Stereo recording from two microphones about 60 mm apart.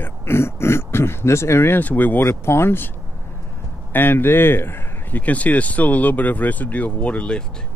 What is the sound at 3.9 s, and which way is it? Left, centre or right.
A man's voice, left.